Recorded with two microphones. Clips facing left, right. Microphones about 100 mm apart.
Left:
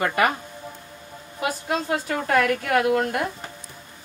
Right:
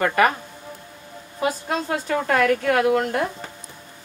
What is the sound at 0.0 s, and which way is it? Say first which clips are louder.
Speech: right 3 dB; 35° right (ahead or behind).